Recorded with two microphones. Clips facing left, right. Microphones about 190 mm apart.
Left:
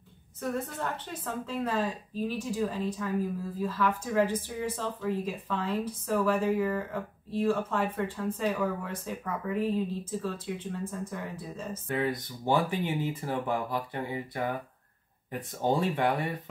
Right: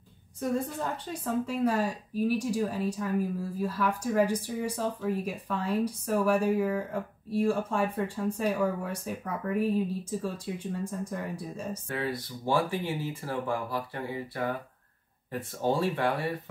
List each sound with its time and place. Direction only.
0.4 s a woman's voice: 10° right (ahead or behind)
11.9 s speech: 20° left (ahead or behind)
15.6 s speech: 20° left (ahead or behind)